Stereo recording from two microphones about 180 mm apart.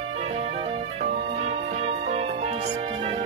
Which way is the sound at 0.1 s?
35° right (ahead or behind).